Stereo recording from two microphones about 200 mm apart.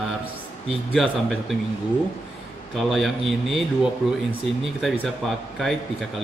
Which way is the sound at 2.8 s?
Centre (ahead or behind).